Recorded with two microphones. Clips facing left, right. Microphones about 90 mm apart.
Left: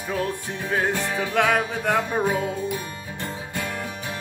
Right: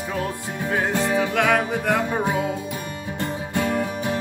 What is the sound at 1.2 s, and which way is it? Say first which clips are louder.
Music: even; centre (ahead or behind).